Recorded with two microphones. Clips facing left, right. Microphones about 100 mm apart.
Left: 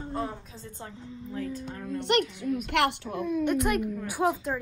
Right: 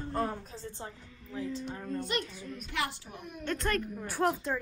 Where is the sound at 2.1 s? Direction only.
70° left (ahead or behind).